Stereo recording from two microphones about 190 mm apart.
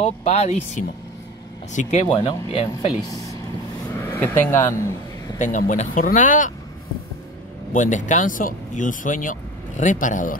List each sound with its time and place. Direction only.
0.0 s speech: 35° left (ahead or behind)
3.9 s a sound: 10° left (ahead or behind)
5.4 s speech: 40° left (ahead or behind)
7.7 s speech: 40° left (ahead or behind)